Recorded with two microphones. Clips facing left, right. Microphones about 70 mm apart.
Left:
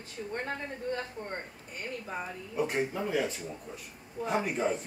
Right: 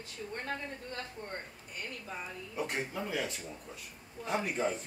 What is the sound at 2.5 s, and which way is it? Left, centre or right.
Speech, centre.